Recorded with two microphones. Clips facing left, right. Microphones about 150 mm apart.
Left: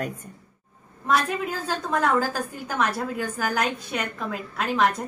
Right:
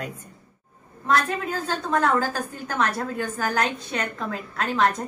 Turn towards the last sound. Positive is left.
turn(degrees=5)  # may be behind; listen again after turning